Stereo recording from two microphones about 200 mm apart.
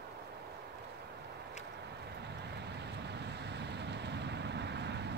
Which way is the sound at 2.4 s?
55° right (ahead or behind).